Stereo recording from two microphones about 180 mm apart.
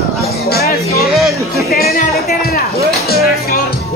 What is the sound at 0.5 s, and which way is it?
Music, 60° left (ahead or behind).